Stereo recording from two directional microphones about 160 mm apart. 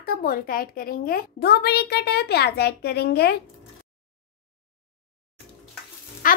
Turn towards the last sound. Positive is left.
turn(degrees=60)  # may be behind; listen again after turning